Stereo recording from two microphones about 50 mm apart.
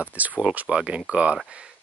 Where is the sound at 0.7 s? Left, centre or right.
Centre.